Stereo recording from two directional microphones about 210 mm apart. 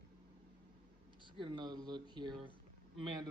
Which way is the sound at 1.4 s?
20° right (ahead or behind).